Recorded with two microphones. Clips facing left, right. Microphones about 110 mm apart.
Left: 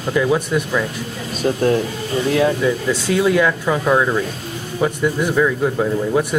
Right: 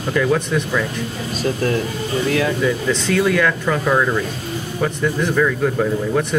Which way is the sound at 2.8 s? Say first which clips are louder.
Left 1 dB; 10° left (ahead or behind).